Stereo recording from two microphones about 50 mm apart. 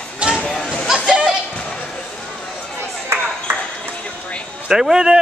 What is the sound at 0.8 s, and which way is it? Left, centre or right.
Chatter, centre.